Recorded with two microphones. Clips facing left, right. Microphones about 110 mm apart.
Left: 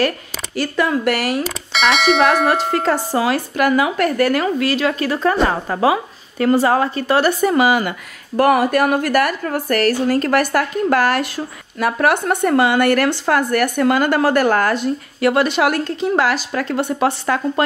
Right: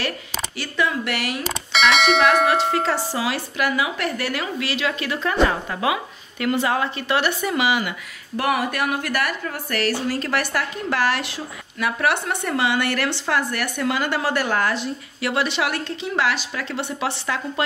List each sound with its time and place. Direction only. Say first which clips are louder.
0.6 s a woman's voice: left 6 dB; 45° left (ahead or behind)
1.4 s speech: left 2 dB; centre (ahead or behind)
2.7 s a woman's voice: left 5 dB; 45° left (ahead or behind)